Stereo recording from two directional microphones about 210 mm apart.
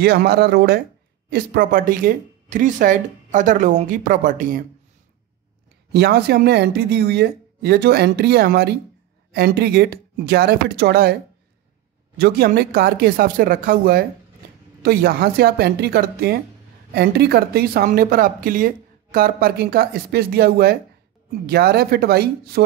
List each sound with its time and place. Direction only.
0.0 s speech: 50° right (ahead or behind)
5.9 s speech: 50° right (ahead or behind)
12.2 s speech: 50° right (ahead or behind)